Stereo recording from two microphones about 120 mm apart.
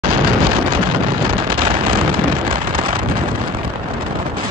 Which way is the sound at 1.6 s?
45° right (ahead or behind).